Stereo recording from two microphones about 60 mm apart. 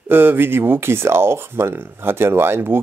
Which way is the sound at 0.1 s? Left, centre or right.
Right.